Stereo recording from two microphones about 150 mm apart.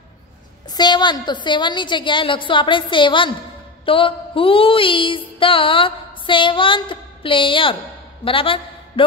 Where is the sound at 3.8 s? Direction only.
35° left (ahead or behind).